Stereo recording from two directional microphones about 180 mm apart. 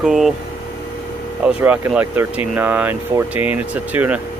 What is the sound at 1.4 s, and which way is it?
Speech, 5° right (ahead or behind).